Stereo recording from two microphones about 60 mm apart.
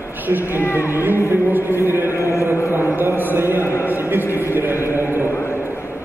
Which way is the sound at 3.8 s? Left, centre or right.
Right.